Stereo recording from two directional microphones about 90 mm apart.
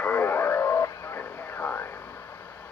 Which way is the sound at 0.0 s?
20° left (ahead or behind).